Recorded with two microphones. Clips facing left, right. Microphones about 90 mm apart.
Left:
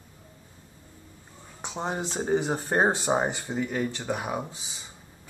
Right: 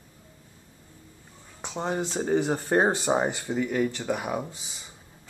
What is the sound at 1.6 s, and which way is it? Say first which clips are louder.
Speech: right 2 dB; 15° left (ahead or behind).